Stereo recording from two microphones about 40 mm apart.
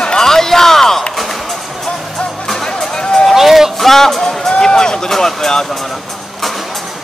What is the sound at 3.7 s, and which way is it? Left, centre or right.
Speech, centre.